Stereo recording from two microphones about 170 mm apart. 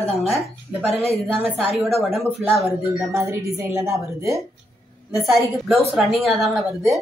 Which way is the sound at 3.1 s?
15° right (ahead or behind).